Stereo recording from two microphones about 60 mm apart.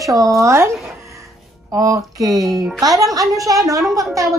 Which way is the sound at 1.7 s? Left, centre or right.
Right.